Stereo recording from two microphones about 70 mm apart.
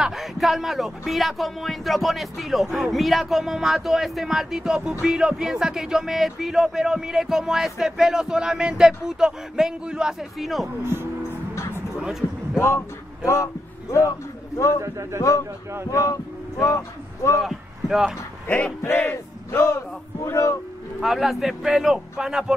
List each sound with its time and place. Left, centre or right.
0.0 s speech: centre
10.8 s speech: right
11.5 s music: left
12.5 s speech: left
14.8 s a man's voice: right
15.9 s speech: left
17.4 s speech: centre
18.8 s speech: left
20.2 s speech: left
21.0 s speech: centre